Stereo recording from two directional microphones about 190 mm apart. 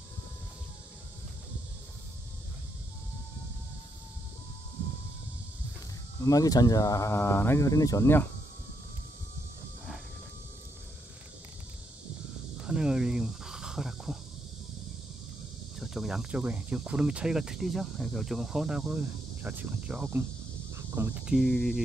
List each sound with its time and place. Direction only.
6.2 s speech: 20° left (ahead or behind)
12.6 s cricket: 5° right (ahead or behind)
15.8 s speech: centre (ahead or behind)